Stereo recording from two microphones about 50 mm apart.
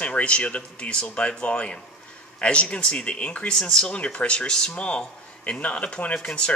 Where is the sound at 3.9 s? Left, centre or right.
Left.